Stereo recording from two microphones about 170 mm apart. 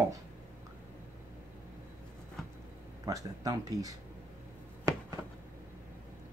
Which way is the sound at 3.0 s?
20° right (ahead or behind).